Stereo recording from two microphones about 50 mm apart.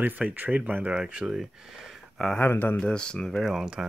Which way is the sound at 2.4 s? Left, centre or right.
Left.